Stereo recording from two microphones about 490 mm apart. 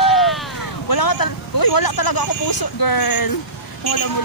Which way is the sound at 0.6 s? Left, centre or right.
Left.